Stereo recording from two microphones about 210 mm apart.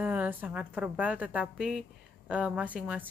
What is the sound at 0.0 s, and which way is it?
A woman's voice, 5° right (ahead or behind).